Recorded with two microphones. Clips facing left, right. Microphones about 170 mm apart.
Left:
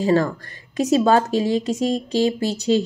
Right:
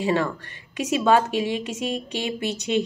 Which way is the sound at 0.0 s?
35° left (ahead or behind).